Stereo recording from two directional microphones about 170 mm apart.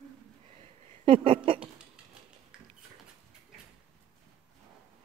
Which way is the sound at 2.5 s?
5° right (ahead or behind).